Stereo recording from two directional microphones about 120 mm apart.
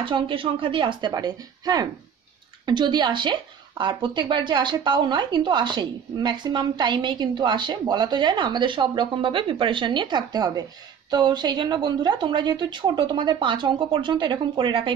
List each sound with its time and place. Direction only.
0.0 s a woman's voice: 45° right (ahead or behind)